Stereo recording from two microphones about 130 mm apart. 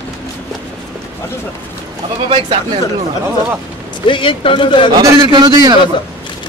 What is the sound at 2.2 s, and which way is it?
Speech, 40° right (ahead or behind).